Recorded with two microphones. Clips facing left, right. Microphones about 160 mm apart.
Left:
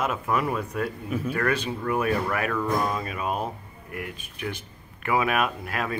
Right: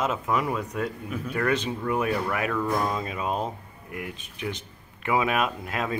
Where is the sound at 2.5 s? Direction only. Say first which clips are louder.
Even; 5° right (ahead or behind).